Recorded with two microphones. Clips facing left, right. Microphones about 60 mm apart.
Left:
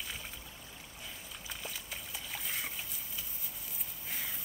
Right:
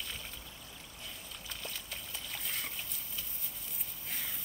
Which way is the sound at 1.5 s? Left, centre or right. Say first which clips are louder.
Left 1 dB; centre.